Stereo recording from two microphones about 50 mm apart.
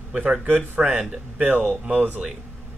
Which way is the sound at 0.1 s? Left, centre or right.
Centre.